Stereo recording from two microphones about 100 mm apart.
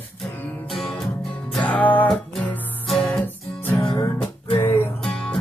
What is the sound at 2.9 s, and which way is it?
Music, 5° left (ahead or behind).